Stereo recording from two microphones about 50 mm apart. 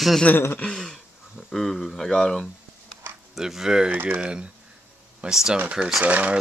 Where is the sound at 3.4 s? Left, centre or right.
Centre.